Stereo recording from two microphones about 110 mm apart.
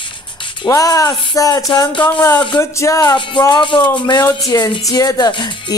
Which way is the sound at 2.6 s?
30° left (ahead or behind).